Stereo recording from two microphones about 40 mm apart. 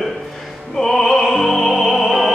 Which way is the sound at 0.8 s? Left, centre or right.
Centre.